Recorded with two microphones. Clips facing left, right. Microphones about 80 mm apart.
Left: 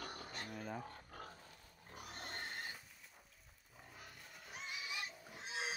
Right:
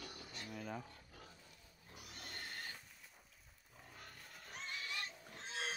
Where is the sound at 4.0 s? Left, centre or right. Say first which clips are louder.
Even; centre.